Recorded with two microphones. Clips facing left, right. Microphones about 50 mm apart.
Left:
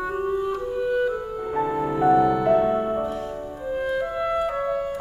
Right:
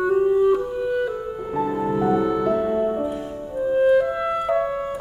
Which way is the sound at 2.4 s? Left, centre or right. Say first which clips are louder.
Left 1 dB; left.